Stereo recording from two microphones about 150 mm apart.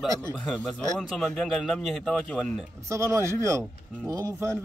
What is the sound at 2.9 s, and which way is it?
Speech, 20° right (ahead or behind).